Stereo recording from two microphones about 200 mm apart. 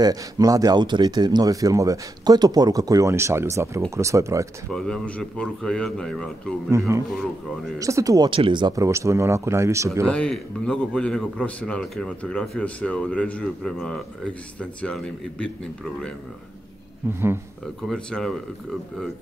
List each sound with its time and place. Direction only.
0.0 s speech: 20° right (ahead or behind)
4.7 s a man's voice: 5° left (ahead or behind)
6.9 s speech: 15° right (ahead or behind)
10.1 s a man's voice: 5° left (ahead or behind)
17.8 s a man's voice: 5° left (ahead or behind)